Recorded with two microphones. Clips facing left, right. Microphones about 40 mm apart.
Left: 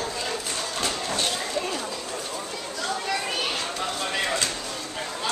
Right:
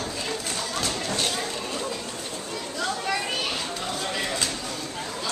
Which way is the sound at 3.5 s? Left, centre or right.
Centre.